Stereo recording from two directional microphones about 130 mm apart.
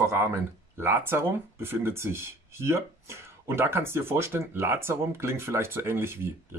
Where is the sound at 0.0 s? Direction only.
20° right (ahead or behind).